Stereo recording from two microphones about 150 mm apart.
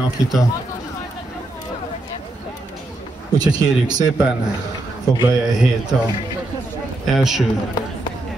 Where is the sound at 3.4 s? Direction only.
25° right (ahead or behind).